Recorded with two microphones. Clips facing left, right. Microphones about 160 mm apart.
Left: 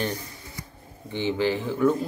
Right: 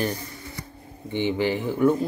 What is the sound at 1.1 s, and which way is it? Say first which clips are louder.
Speech: right 1 dB; 15° right (ahead or behind).